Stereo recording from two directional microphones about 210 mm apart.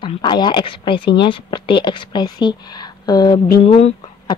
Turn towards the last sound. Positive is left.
turn(degrees=30)  # may be behind; listen again after turning